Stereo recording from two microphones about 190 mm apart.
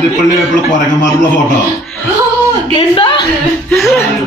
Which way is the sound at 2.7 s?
25° left (ahead or behind).